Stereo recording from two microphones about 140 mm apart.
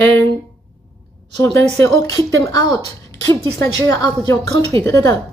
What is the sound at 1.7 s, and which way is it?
Speech, 20° left (ahead or behind).